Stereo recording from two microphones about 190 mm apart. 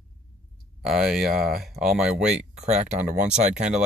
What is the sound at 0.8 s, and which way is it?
Speech, centre (ahead or behind).